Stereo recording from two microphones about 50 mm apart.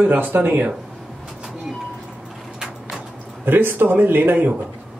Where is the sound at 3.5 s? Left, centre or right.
Right.